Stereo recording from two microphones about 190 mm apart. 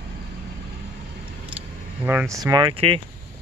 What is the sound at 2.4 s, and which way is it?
Speech, 25° right (ahead or behind).